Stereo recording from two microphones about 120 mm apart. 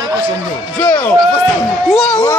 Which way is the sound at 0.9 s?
10° left (ahead or behind).